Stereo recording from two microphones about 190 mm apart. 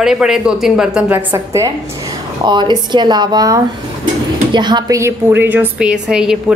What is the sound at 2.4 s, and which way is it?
A woman's voice, 25° right (ahead or behind).